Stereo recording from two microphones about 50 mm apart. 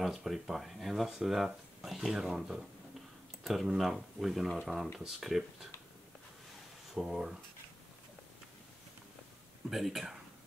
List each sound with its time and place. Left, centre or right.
0.0 s speech: centre
7.0 s speech: centre
9.7 s speech: centre